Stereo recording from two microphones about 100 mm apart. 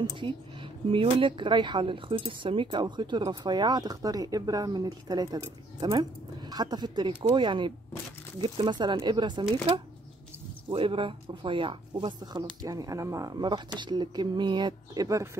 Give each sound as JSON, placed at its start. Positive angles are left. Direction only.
{"t": 0.1, "sound": "speech", "side_deg": -55}
{"t": 10.7, "sound": "speech", "side_deg": -60}
{"t": 12.6, "sound": "speech", "side_deg": -35}